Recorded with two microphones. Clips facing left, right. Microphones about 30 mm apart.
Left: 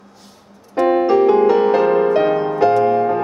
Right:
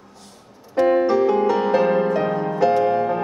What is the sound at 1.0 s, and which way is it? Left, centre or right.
Music, left.